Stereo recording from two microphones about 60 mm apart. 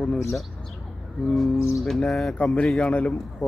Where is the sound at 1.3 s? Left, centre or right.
Centre.